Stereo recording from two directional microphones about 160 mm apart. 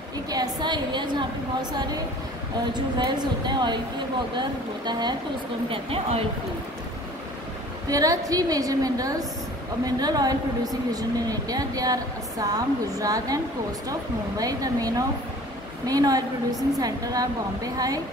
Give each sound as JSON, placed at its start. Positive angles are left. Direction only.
{"t": 0.3, "sound": "speech", "side_deg": -25}
{"t": 2.7, "sound": "speech", "side_deg": -25}
{"t": 7.9, "sound": "speech", "side_deg": -20}
{"t": 14.4, "sound": "speech", "side_deg": -25}